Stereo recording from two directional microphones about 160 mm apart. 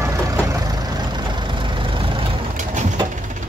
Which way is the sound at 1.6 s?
35° right (ahead or behind).